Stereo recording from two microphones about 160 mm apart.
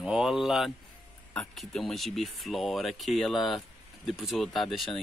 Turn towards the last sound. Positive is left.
turn(degrees=0)  # may be behind; listen again after turning